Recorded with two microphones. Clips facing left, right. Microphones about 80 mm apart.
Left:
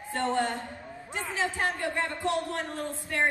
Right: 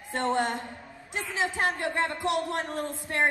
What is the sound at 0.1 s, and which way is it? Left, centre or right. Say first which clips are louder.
Speech: right 1 dB; right.